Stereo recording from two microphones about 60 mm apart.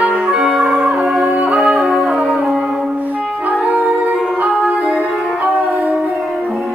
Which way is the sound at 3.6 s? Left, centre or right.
Right.